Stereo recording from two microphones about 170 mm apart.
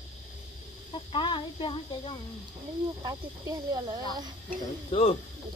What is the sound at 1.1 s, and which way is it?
Speech, 30° left (ahead or behind).